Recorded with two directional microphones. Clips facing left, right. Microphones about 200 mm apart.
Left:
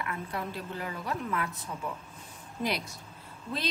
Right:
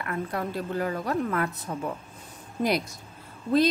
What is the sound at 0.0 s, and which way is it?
A woman's voice, 50° right (ahead or behind).